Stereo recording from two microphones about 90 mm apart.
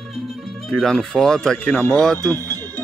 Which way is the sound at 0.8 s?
5° left (ahead or behind).